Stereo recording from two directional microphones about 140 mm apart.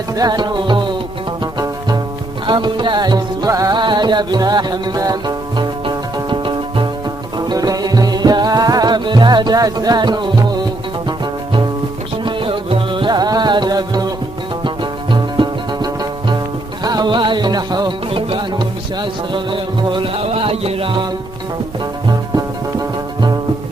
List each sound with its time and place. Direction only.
0.1 s music: 30° right (ahead or behind)
12.3 s music: 40° right (ahead or behind)